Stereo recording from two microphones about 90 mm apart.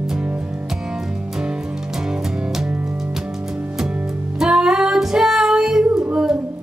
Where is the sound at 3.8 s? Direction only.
10° right (ahead or behind).